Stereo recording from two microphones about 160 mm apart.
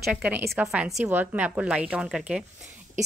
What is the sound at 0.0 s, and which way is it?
A woman's voice, 5° right (ahead or behind).